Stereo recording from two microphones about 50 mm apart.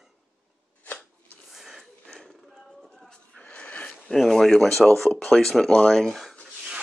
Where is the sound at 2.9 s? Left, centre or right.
Centre.